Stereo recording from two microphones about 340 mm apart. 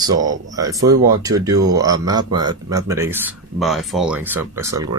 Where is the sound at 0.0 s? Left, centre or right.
Centre.